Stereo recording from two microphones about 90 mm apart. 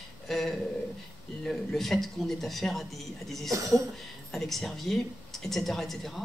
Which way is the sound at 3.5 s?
35° right (ahead or behind).